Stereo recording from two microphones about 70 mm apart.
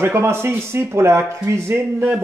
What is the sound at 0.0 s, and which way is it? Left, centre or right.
Speech, right.